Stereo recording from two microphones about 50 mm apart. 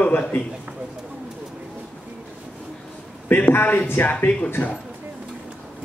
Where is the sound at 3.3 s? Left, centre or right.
Left.